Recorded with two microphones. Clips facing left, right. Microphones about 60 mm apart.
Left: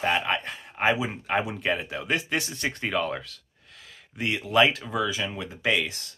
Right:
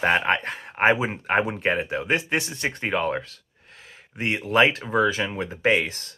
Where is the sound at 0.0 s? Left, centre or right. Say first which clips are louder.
Right 4 dB; right.